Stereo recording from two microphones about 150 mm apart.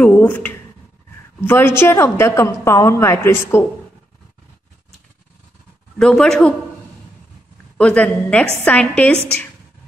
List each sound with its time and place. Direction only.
0.0 s a woman's voice: 10° left (ahead or behind)
5.9 s speech: 5° left (ahead or behind)
7.7 s a woman's voice: 10° left (ahead or behind)